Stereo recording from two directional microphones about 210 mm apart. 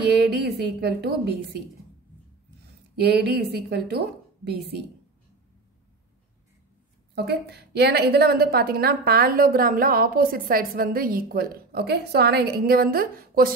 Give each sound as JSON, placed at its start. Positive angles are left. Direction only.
{"t": 0.0, "sound": "a woman's voice", "side_deg": -50}
{"t": 3.0, "sound": "a woman's voice", "side_deg": -50}
{"t": 7.2, "sound": "a woman's voice", "side_deg": -50}